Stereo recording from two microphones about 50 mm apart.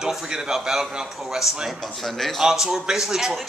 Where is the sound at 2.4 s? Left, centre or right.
Centre.